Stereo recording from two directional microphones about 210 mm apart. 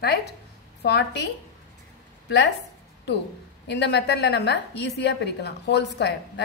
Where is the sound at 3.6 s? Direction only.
55° left (ahead or behind).